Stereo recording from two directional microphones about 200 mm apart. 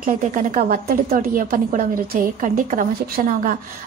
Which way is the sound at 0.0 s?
45° right (ahead or behind).